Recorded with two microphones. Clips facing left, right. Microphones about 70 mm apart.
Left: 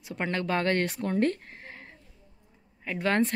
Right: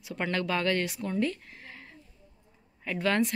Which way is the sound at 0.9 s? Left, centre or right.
Left.